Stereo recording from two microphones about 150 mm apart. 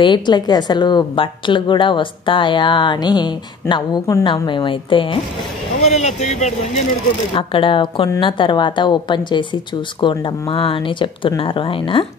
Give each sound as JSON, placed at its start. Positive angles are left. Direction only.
{"t": 0.0, "sound": "a woman's voice", "side_deg": 30}
{"t": 5.9, "sound": "speech", "side_deg": 50}
{"t": 7.3, "sound": "a woman's voice", "side_deg": 35}